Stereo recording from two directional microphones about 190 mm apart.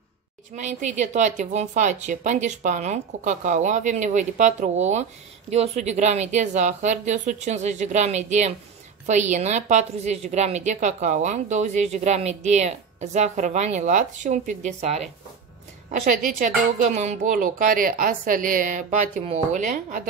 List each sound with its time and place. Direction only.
0.7 s a woman's voice: 40° right (ahead or behind)